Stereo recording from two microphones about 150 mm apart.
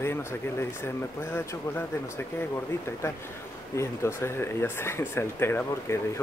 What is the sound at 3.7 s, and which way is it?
Speech, 15° left (ahead or behind).